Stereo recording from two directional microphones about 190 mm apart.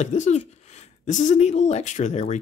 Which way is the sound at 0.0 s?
40° left (ahead or behind).